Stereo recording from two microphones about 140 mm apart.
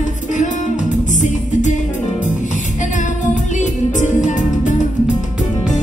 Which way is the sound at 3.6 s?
65° left (ahead or behind).